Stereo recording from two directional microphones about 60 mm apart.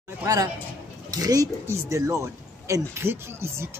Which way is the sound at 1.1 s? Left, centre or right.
Right.